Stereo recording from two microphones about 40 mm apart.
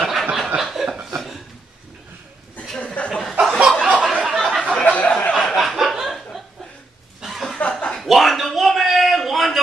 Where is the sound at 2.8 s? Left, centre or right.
Left.